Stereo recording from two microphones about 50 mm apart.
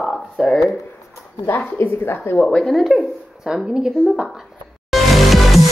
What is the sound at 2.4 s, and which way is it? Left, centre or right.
Speech, centre.